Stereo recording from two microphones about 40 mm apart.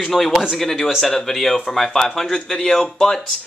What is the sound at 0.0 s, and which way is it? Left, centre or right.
Speech, centre.